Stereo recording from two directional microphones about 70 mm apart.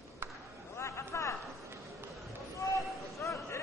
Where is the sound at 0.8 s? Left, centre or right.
Left.